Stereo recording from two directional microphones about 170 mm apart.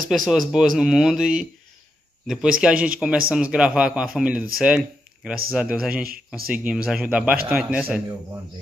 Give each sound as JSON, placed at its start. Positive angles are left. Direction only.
{"t": 0.1, "sound": "a man's voice", "side_deg": 0}
{"t": 6.0, "sound": "speech", "side_deg": -60}
{"t": 6.5, "sound": "a man's voice", "side_deg": -10}